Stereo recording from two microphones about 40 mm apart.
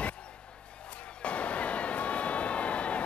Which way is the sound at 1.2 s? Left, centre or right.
Left.